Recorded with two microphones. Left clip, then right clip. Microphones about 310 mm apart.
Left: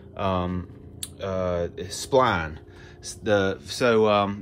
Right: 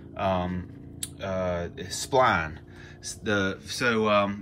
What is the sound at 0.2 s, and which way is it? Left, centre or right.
Speech, centre.